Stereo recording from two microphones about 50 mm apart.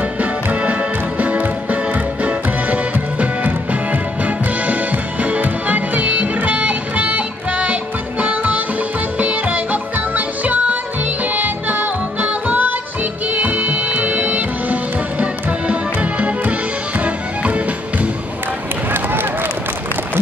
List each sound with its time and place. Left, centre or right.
0.0 s music: right
18.9 s run: right